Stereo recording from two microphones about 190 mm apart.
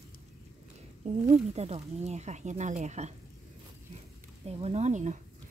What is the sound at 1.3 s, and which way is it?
Speech, 35° right (ahead or behind).